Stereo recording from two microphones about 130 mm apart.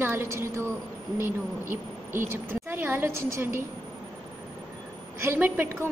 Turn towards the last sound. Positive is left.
turn(degrees=-15)  # may be behind; listen again after turning